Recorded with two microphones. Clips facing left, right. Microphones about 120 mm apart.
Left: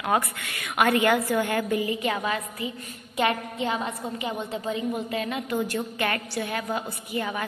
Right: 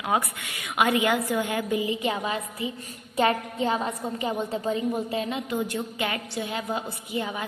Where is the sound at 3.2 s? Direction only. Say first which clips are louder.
Right 2 dB; 35° right (ahead or behind).